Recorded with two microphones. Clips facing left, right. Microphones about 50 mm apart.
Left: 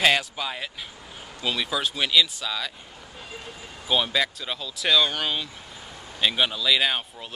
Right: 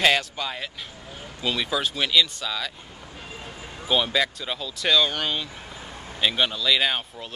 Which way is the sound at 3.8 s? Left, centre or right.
Centre.